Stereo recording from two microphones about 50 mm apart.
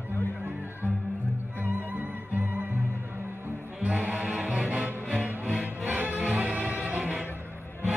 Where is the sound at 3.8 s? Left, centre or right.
Right.